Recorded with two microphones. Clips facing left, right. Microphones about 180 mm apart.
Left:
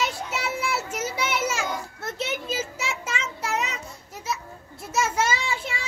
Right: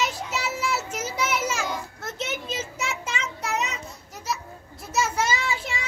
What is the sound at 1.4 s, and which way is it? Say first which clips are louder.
Children playing: left 1 dB; 5° left (ahead or behind).